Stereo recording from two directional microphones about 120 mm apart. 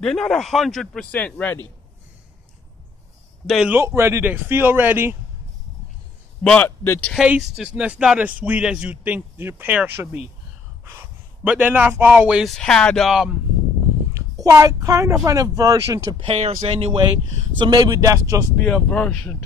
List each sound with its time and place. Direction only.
0.0 s a man's voice: 5° left (ahead or behind)
3.6 s speech: 20° right (ahead or behind)
6.4 s speech: 10° left (ahead or behind)
7.2 s speech: 10° right (ahead or behind)
10.8 s a sound: 20° right (ahead or behind)
11.4 s speech: 10° right (ahead or behind)
12.5 s a man's voice: 5° left (ahead or behind)
14.4 s a child's voice: 25° right (ahead or behind)
16.3 s speech: 65° right (ahead or behind); by 18.4 s 30° right (ahead or behind)
18.6 s speech: 5° left (ahead or behind)